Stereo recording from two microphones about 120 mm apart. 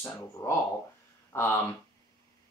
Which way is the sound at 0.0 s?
20° left (ahead or behind).